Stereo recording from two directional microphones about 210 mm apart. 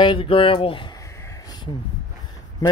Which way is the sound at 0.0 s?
25° left (ahead or behind).